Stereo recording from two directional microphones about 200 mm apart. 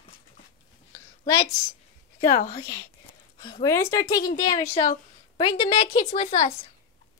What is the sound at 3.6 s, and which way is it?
A woman's voice, 15° left (ahead or behind).